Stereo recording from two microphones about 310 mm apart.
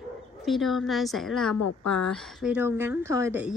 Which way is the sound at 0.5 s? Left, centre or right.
Centre.